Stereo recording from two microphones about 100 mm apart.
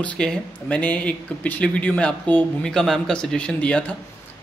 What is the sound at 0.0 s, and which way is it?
Speech, 10° left (ahead or behind).